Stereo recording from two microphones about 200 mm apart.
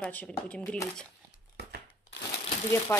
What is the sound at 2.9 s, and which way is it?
Speech, 10° left (ahead or behind).